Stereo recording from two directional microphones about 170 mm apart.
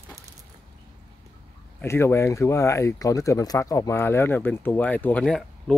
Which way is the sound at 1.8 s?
15° left (ahead or behind).